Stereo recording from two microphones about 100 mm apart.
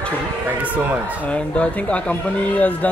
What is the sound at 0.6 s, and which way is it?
Speech, 15° right (ahead or behind).